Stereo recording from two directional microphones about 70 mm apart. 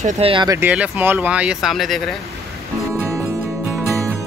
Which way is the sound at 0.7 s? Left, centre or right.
Centre.